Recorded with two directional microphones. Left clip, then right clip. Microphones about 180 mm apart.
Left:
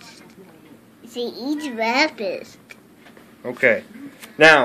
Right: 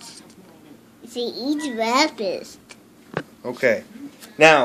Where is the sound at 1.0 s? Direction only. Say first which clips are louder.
Right 1 dB; 50° right (ahead or behind).